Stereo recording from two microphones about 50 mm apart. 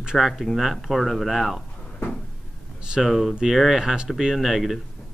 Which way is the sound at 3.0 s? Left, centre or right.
Centre.